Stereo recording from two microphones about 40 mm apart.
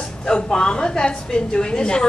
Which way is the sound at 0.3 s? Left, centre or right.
Left.